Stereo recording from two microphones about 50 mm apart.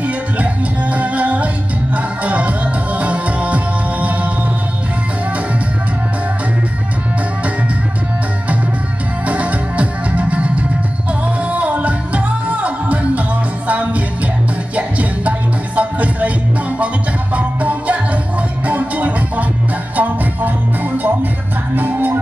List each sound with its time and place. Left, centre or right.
0.0 s music: right
9.3 s music: right